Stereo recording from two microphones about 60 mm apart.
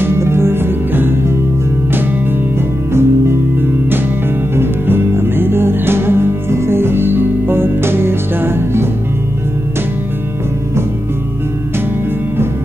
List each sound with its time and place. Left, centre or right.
0.0 s music: right
2.9 s music: right
4.6 s music: right